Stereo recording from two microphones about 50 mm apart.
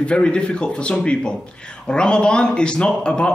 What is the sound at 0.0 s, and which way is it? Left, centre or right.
A man's voice, left.